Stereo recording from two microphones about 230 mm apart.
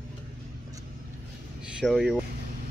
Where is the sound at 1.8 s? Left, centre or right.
Centre.